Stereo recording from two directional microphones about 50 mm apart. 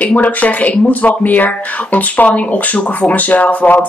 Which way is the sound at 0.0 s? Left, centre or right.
Left.